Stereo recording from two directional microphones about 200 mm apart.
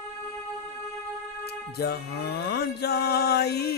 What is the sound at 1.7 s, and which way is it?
Music, 55° left (ahead or behind).